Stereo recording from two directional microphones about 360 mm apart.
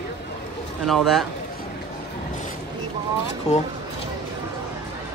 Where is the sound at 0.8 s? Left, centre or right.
Centre.